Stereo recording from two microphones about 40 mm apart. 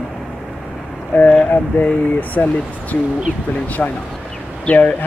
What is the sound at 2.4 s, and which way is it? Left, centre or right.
Speech, left.